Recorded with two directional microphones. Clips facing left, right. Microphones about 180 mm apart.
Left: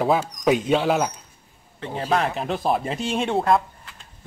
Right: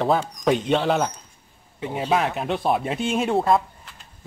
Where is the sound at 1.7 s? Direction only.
10° right (ahead or behind).